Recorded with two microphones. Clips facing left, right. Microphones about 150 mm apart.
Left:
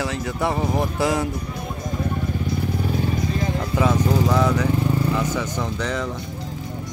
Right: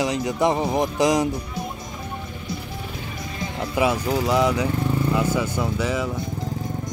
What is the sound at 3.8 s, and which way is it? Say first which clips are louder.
Speech: left 1 dB; 10° right (ahead or behind).